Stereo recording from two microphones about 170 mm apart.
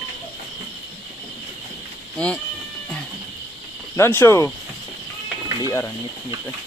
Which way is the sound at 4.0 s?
15° left (ahead or behind).